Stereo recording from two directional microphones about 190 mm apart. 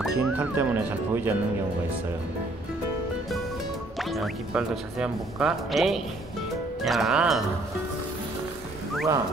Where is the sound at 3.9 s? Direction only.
Centre (ahead or behind).